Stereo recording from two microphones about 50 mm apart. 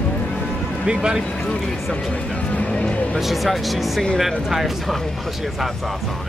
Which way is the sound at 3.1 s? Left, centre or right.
Centre.